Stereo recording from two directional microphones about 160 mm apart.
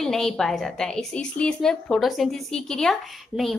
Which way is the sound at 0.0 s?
Centre (ahead or behind).